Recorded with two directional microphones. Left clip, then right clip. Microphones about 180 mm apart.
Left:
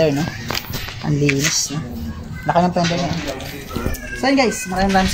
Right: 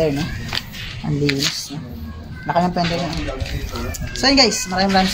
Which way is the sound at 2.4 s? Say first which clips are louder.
Left 2 dB; 50° left (ahead or behind).